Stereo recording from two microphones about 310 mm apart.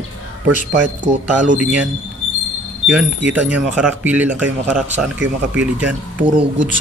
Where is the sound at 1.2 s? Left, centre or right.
Right.